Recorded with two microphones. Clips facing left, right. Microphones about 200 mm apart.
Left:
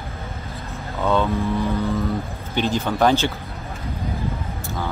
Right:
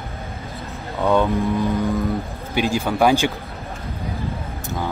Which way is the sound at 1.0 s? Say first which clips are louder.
Right 2 dB; 15° right (ahead or behind).